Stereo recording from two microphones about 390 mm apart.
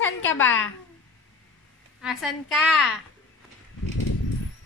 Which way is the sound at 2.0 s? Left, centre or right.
Centre.